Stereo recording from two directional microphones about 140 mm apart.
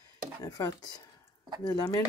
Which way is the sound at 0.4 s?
25° left (ahead or behind).